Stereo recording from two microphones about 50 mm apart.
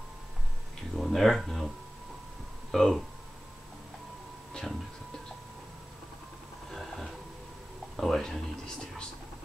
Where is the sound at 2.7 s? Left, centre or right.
Centre.